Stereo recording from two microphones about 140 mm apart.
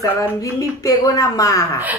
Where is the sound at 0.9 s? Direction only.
25° left (ahead or behind).